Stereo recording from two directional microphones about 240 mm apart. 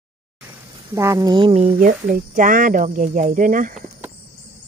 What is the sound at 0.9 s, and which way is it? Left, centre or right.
Speech, centre.